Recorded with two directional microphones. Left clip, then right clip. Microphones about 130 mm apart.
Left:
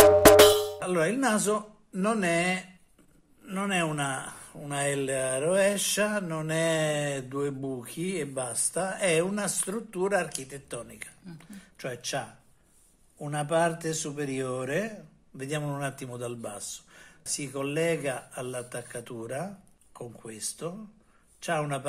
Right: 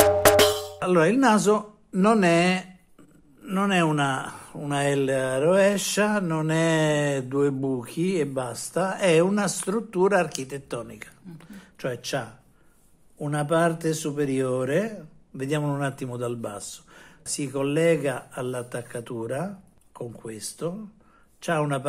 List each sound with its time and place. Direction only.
0.0 s music: centre (ahead or behind)
0.7 s speech: 40° right (ahead or behind)
3.4 s speech: 40° right (ahead or behind)
10.8 s speech: 40° right (ahead or behind)